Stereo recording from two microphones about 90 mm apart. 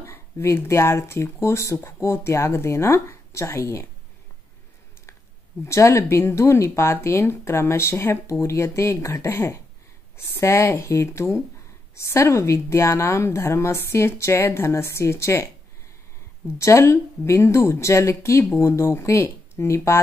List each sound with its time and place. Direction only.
0.0 s speech: 30° left (ahead or behind)
5.7 s a woman's voice: 30° left (ahead or behind)
16.5 s a woman's voice: 35° left (ahead or behind)